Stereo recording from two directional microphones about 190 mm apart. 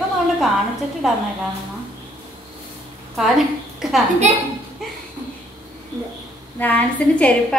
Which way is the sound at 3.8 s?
Centre (ahead or behind).